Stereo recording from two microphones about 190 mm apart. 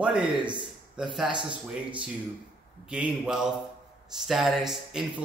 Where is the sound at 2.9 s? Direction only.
5° right (ahead or behind).